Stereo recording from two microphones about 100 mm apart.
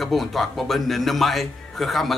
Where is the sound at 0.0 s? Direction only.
Centre (ahead or behind).